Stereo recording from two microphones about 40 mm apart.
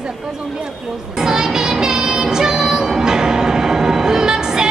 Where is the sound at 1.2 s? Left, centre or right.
Centre.